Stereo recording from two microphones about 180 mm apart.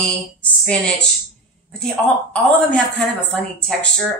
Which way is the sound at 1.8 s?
5° left (ahead or behind).